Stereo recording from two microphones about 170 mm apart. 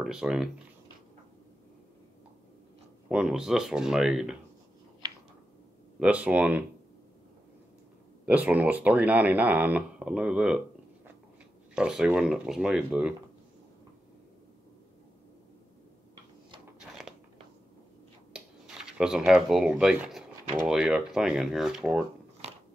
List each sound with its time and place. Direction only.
0.0 s speech: 5° right (ahead or behind)
3.1 s speech: 5° right (ahead or behind)
5.9 s speech: 10° right (ahead or behind)
8.3 s speech: 10° right (ahead or behind)
11.7 s speech: 5° right (ahead or behind)
17.1 s crunch: 5° right (ahead or behind)
18.3 s speech: 5° right (ahead or behind)